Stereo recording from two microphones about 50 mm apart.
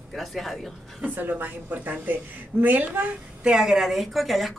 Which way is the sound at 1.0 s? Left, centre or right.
Right.